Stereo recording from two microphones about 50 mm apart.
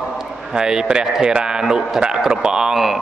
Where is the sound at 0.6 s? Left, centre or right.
Centre.